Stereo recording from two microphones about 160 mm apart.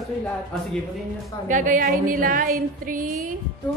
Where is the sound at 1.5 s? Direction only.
55° right (ahead or behind).